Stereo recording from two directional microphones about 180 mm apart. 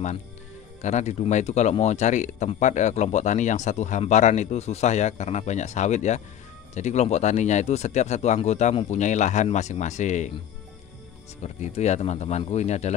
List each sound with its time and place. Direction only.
0.8 s speech: 40° left (ahead or behind)
11.4 s speech: 40° left (ahead or behind)